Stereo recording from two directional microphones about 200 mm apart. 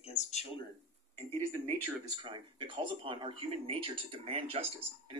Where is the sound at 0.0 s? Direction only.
35° left (ahead or behind).